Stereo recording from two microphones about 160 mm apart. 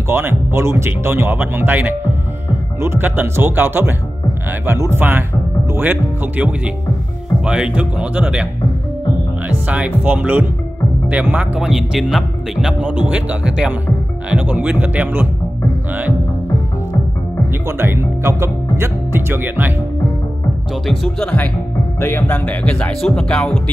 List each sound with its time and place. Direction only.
0.1 s speech: 15° right (ahead or behind)
9.5 s speech: 10° right (ahead or behind)
17.6 s speech: 15° right (ahead or behind)
20.8 s speech: 5° left (ahead or behind)